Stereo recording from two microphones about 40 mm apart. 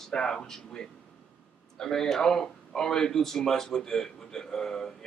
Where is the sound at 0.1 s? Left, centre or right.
Left.